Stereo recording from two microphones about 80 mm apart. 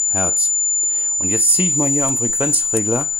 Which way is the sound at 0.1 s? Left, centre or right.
Centre.